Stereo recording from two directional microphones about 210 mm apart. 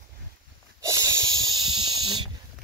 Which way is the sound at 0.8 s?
15° right (ahead or behind).